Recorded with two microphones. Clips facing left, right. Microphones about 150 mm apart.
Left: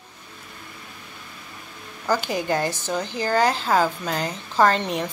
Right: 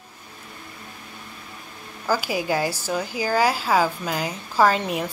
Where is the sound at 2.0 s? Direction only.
5° right (ahead or behind).